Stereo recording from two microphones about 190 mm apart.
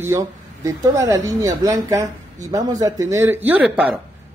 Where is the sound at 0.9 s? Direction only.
15° right (ahead or behind).